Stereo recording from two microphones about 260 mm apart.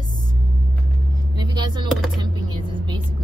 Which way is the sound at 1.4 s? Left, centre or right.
Centre.